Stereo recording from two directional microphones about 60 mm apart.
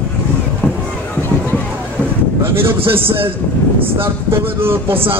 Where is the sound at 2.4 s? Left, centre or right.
Right.